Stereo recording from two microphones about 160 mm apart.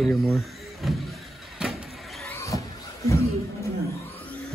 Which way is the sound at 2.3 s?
20° left (ahead or behind).